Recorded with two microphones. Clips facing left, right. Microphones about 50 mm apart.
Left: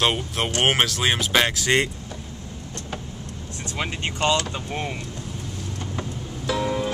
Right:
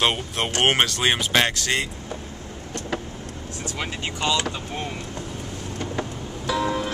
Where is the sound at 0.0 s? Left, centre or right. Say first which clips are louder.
Even; centre.